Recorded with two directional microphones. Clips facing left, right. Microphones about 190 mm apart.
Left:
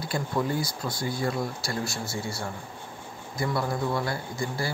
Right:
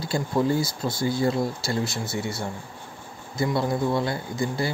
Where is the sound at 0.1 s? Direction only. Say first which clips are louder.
Right 5 dB; 25° right (ahead or behind).